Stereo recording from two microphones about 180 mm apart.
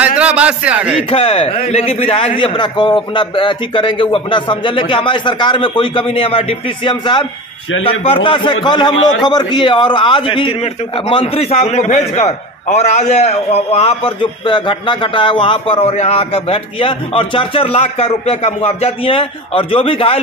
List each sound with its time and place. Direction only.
0.0 s a man's voice: 5° right (ahead or behind)
1.1 s a man's voice: 35° left (ahead or behind)